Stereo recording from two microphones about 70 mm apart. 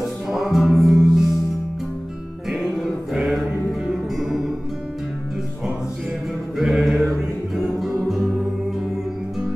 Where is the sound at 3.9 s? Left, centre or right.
Centre.